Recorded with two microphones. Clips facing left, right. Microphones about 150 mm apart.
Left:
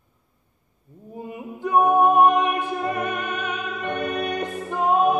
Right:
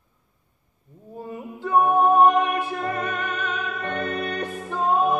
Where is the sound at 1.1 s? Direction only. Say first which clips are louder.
Even; 15° left (ahead or behind).